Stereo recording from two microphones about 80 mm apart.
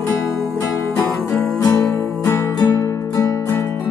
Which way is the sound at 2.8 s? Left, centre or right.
Left.